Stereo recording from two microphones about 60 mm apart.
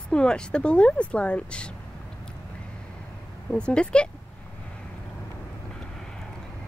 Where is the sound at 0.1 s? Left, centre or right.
Centre.